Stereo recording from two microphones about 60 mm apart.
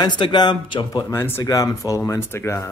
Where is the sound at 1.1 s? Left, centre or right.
Left.